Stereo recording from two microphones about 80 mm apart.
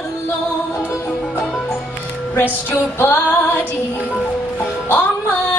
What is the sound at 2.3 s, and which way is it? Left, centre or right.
Female singing, left.